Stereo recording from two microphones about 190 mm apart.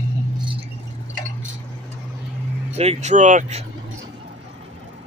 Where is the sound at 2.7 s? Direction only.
35° right (ahead or behind).